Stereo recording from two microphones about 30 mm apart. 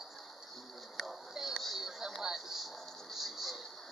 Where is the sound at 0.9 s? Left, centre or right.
Centre.